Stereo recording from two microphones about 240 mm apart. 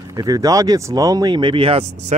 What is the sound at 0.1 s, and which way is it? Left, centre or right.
Speech, centre.